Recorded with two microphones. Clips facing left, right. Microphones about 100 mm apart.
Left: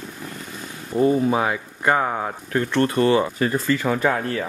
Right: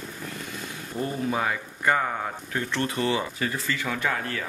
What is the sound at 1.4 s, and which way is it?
Speech, 45° left (ahead or behind).